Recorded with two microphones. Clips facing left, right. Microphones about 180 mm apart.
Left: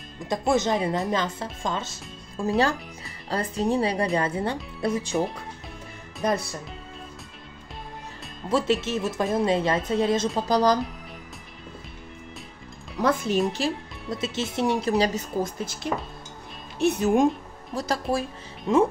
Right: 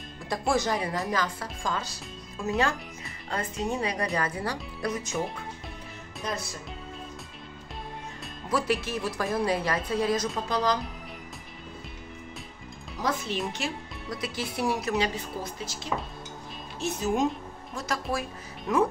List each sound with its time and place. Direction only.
0.3 s speech: 20° left (ahead or behind)
8.5 s speech: 25° left (ahead or behind)
13.3 s speech: 45° left (ahead or behind)
14.1 s speech: 25° left (ahead or behind); by 17.3 s 55° left (ahead or behind)
17.7 s speech: 30° left (ahead or behind)